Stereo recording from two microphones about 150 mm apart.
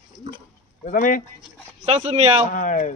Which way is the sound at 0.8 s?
65° left (ahead or behind).